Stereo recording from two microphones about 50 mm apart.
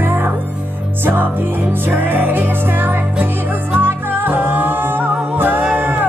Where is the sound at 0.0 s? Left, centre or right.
Right.